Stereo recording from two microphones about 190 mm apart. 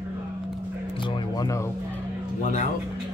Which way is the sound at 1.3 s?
15° left (ahead or behind).